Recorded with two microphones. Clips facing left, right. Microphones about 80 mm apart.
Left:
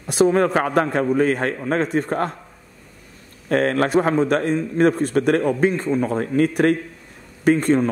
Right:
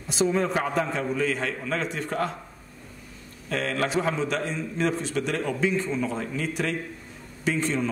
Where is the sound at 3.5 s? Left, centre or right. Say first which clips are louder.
Left 8 dB; left.